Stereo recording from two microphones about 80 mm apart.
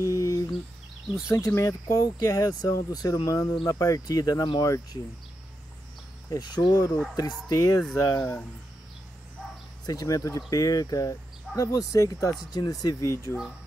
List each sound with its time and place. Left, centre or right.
0.0 s a sound: left
1.0 s speech: centre
1.3 s speech: left
1.9 s speech: left
6.3 s speech: left
9.8 s speech: left
12.5 s speech: left